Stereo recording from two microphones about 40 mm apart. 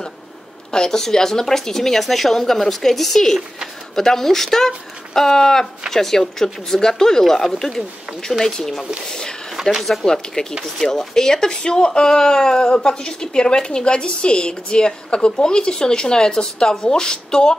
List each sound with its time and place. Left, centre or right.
0.7 s speech: centre
9.6 s speech: centre
10.0 s speech: centre